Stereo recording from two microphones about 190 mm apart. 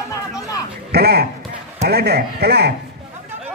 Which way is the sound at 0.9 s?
55° right (ahead or behind).